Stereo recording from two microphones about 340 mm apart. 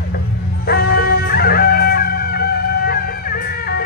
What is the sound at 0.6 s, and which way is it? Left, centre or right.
Music, left.